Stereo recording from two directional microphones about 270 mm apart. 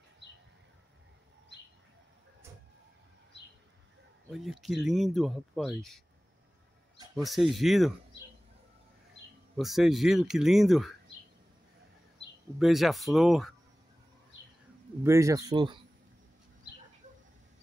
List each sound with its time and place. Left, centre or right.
4.3 s speech: centre
7.2 s speech: centre
9.6 s speech: centre
12.5 s speech: centre
15.0 s speech: centre